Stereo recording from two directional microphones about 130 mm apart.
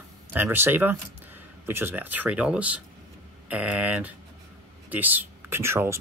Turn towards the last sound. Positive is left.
turn(degrees=-20)  # may be behind; listen again after turning